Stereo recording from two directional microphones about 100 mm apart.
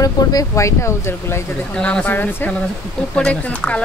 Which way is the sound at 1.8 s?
15° left (ahead or behind).